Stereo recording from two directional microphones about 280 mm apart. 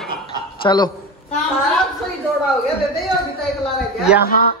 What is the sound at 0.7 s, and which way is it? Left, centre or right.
Speech, centre.